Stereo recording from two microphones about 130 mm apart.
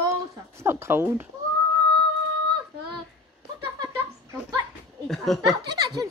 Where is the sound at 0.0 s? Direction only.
20° right (ahead or behind).